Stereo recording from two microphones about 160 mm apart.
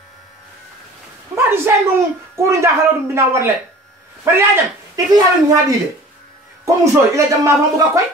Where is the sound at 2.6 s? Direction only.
15° right (ahead or behind).